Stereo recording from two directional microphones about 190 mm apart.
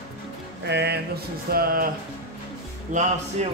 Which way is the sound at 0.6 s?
60° right (ahead or behind).